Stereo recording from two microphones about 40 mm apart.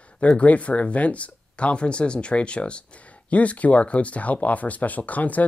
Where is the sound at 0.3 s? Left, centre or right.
Left.